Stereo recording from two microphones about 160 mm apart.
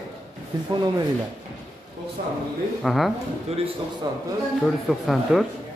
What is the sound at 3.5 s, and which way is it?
Speech, 40° right (ahead or behind).